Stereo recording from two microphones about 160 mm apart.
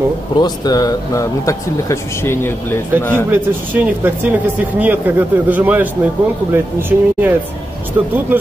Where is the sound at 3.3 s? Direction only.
15° right (ahead or behind).